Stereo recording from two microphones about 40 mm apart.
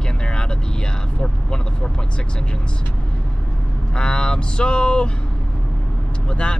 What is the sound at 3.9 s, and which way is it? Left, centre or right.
Speech, left.